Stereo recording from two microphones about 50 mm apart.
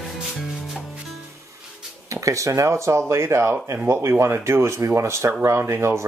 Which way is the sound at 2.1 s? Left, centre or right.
Right.